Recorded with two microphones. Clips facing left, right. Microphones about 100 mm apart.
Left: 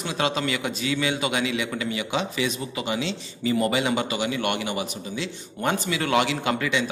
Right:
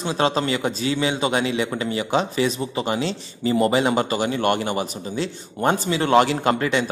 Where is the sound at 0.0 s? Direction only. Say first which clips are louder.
Right 4 dB; 35° right (ahead or behind).